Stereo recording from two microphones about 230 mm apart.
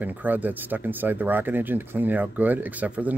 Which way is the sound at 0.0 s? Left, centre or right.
Centre.